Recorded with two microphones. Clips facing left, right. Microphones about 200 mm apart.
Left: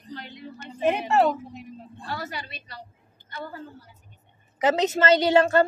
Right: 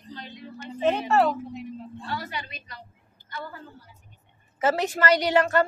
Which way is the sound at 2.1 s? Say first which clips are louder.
Left 1 dB; 45° left (ahead or behind).